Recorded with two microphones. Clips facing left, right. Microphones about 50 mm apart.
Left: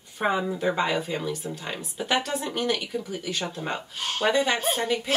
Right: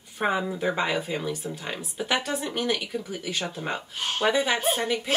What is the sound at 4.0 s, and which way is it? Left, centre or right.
Speech, right.